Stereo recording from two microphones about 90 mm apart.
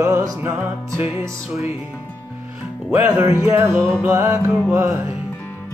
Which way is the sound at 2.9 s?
25° right (ahead or behind).